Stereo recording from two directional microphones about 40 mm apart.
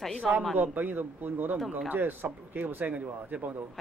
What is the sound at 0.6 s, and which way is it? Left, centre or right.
Speech, right.